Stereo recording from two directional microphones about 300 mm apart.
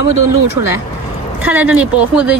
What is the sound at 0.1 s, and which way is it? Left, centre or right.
Speech, right.